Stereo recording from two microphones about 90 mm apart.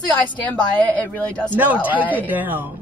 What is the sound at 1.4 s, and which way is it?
Speech, 20° right (ahead or behind).